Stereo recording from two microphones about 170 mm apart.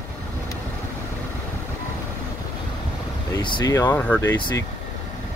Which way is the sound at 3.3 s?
25° left (ahead or behind).